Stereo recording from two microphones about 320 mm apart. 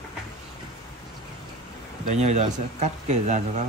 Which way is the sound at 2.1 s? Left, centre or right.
Right.